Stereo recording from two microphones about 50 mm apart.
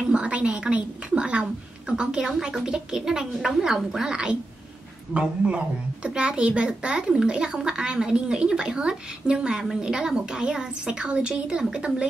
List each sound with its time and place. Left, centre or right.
0.0 s a child's voice: right